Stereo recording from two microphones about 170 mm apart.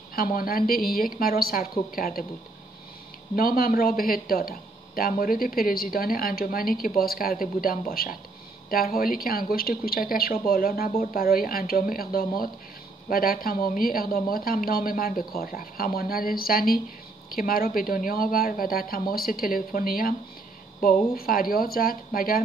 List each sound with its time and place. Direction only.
0.1 s speech: 60° left (ahead or behind)
3.3 s speech: 60° left (ahead or behind)